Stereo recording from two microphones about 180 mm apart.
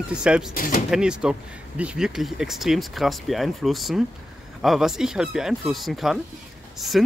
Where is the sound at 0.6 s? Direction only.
50° left (ahead or behind).